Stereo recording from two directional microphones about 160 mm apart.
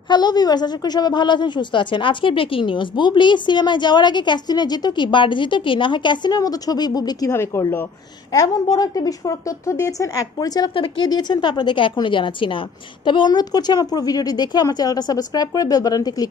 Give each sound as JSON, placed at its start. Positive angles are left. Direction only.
{"t": 0.1, "sound": "a woman's voice", "side_deg": 25}